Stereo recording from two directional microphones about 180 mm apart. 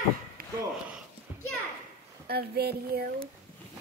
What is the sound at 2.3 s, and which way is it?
Speech, 60° right (ahead or behind).